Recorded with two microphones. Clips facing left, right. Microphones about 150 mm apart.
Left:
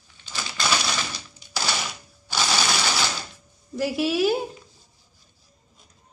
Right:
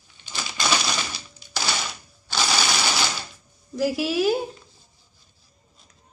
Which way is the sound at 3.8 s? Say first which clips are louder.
Even; centre (ahead or behind).